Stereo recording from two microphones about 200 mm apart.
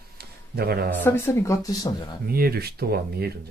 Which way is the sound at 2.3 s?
50° right (ahead or behind).